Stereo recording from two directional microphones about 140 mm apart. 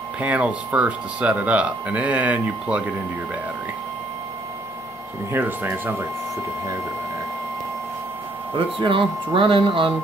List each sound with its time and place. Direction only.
0.2 s speech: 10° right (ahead or behind)
5.3 s speech: 15° right (ahead or behind)
8.7 s speech: 40° right (ahead or behind)